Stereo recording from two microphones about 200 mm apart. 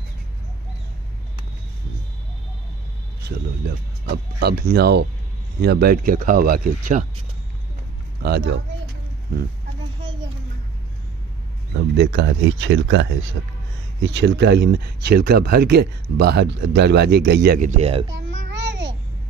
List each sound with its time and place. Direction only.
3.3 s speech: 55° right (ahead or behind)
8.2 s speech: 55° right (ahead or behind)
11.7 s speech: 60° right (ahead or behind)
13.4 s speech: 80° right
14.0 s speech: 60° right (ahead or behind); by 18.0 s 30° right (ahead or behind)
18.3 s babbling: 65° right (ahead or behind)